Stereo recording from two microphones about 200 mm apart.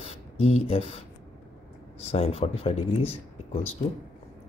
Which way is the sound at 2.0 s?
30° left (ahead or behind).